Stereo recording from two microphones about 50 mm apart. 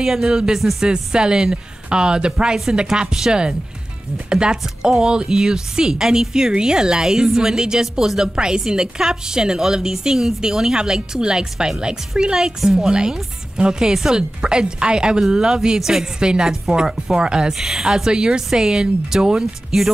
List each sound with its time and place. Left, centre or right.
0.0 s a woman's voice: centre
0.8 s a woman's voice: centre